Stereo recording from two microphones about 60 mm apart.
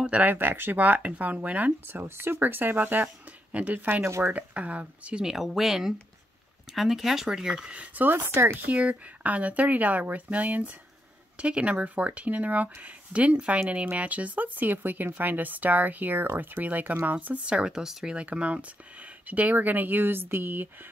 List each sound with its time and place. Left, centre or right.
0.0 s speech: right
1.9 s speech: right
5.2 s speech: centre
8.1 s speech: right
8.6 s speech: right